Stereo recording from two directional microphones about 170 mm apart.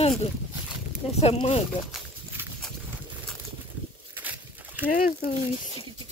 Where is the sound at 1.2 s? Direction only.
35° left (ahead or behind).